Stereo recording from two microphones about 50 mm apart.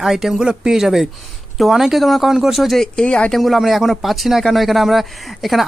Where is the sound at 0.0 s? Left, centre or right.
Centre.